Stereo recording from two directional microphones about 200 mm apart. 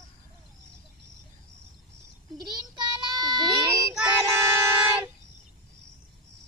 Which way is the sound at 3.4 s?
Centre (ahead or behind).